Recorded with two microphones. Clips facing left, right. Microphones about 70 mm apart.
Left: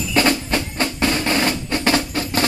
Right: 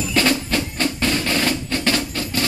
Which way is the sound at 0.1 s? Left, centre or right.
Centre.